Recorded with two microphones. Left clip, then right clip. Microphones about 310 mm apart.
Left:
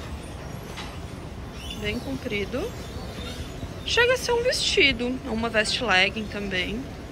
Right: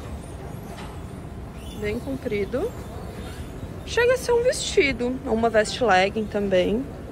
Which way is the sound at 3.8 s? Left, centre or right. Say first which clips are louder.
Right 1 dB; centre.